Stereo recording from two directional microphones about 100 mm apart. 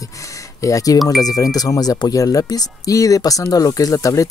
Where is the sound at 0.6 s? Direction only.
35° left (ahead or behind).